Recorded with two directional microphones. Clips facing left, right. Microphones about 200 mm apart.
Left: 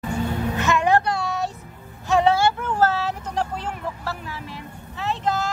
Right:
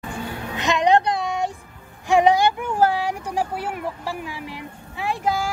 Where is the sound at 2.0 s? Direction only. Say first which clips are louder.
Right 2 dB; 15° right (ahead or behind).